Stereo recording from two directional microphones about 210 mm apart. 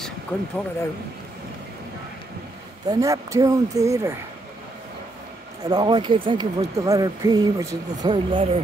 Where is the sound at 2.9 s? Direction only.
15° right (ahead or behind).